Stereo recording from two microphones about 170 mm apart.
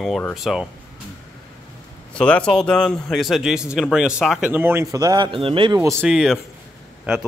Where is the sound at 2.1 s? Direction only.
5° left (ahead or behind); by 5.8 s 30° right (ahead or behind).